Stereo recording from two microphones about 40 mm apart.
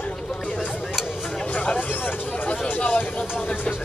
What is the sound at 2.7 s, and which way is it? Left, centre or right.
Vehicle, left.